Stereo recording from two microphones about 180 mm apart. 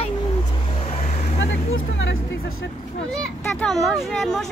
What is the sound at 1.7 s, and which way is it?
Music, 90° left.